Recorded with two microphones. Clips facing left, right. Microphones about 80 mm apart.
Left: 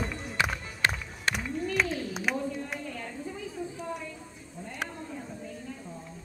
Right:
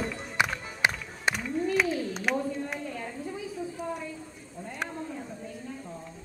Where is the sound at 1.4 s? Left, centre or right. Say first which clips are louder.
Right 3 dB; centre.